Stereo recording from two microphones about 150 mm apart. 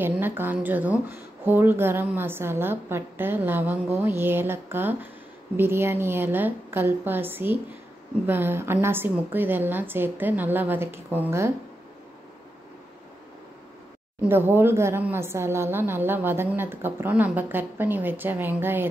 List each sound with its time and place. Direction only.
0.0 s a woman's voice: 15° right (ahead or behind)
14.2 s a woman's voice: 15° right (ahead or behind)